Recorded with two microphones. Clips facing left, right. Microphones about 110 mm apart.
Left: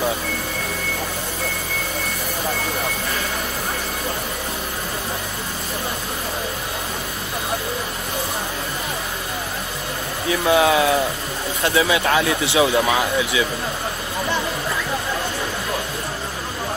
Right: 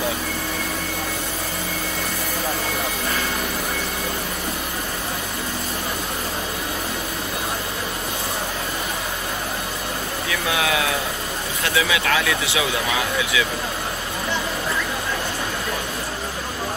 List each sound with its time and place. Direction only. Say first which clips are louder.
10.5 s speech: left 7 dB; 35° left (ahead or behind)